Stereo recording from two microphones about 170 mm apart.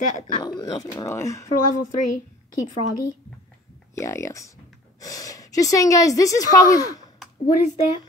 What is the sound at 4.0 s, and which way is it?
Speech, 15° left (ahead or behind).